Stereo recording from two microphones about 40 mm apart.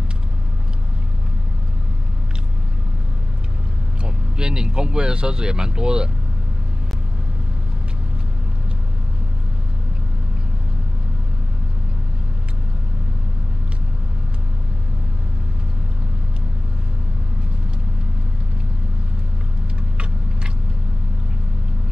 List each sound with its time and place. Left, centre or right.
4.0 s speech: right